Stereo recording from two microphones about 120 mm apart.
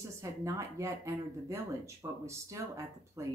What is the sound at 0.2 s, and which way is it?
Speech, 25° right (ahead or behind).